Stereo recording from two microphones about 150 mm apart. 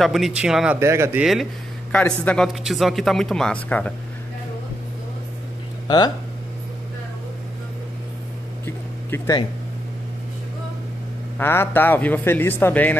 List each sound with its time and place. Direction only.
0.0 s speech: centre (ahead or behind)
0.7 s speech: 20° right (ahead or behind)
1.2 s speech: centre (ahead or behind)
5.9 s speech: 30° left (ahead or behind)
8.6 s vehicle: 15° left (ahead or behind)
11.3 s a man's voice: 15° left (ahead or behind)